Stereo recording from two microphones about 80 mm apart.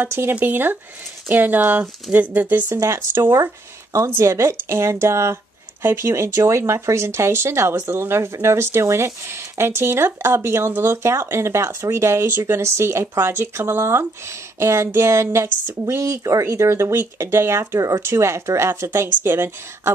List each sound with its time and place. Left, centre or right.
0.0 s speech: right
2.7 s speech: right